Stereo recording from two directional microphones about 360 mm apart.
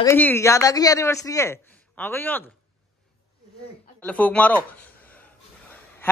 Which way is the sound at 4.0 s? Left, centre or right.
Centre.